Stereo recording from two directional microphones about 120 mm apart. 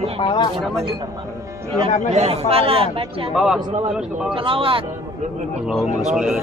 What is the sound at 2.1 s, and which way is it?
Speech, 60° right (ahead or behind).